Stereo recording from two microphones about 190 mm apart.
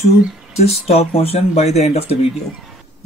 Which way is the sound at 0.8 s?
30° left (ahead or behind).